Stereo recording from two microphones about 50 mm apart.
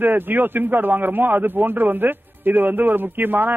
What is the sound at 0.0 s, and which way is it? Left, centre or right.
A man's voice, right.